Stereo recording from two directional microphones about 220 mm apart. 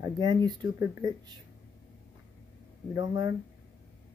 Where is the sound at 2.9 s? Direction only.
15° right (ahead or behind).